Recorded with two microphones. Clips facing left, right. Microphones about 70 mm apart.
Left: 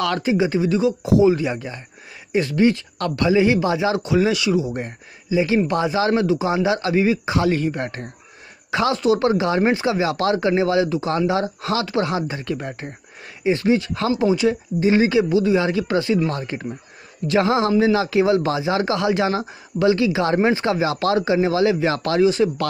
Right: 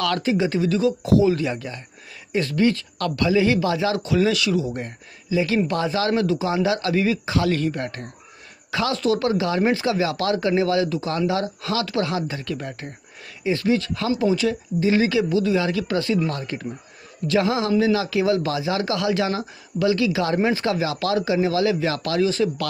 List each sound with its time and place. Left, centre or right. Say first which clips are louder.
0.0 s speech: left 2 dB; left
22.2 s speech: left 4 dB; left